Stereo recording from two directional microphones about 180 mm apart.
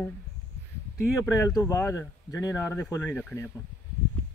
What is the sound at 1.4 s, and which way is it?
Speech, 15° left (ahead or behind).